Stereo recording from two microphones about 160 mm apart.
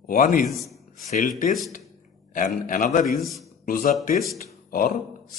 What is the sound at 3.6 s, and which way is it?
Speech, 60° left (ahead or behind).